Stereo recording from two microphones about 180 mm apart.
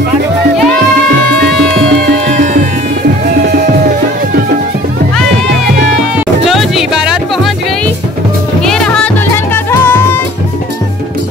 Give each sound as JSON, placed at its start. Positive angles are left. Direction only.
{"t": 2.2, "sound": "music", "side_deg": -40}
{"t": 6.1, "sound": "music", "side_deg": 0}